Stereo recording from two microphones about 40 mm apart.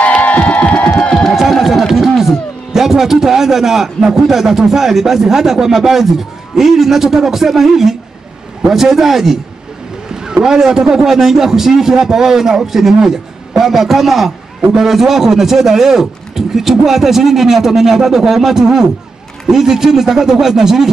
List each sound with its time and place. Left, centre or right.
0.0 s music: left
1.3 s a man's voice: centre